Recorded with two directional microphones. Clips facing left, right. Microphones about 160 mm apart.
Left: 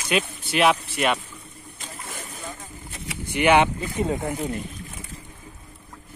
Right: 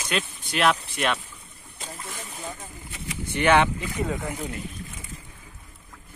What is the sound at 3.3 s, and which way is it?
Speech, 15° left (ahead or behind).